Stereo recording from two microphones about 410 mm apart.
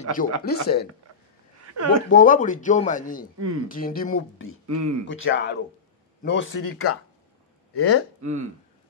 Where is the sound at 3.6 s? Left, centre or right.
Left.